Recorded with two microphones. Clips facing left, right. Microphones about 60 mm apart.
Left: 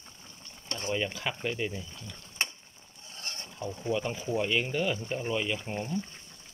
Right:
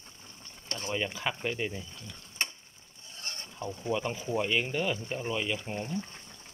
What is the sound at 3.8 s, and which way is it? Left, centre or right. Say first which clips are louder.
Mechanisms: left 1 dB; centre.